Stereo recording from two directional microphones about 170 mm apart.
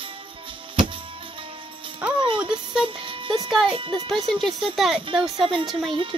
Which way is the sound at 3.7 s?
30° right (ahead or behind).